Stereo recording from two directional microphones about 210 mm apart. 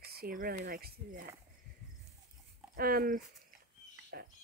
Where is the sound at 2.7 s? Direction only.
45° right (ahead or behind).